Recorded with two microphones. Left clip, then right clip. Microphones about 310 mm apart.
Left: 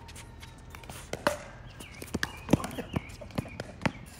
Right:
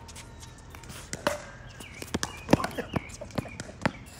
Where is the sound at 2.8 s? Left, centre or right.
Right.